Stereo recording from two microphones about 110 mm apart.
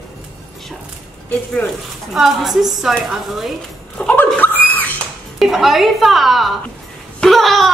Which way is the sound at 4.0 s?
10° left (ahead or behind).